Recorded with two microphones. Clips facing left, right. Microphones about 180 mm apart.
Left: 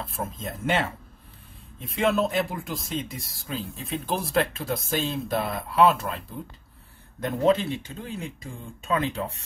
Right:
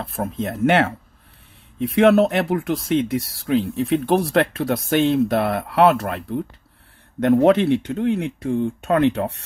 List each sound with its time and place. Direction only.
0.0 s speech: 65° right (ahead or behind)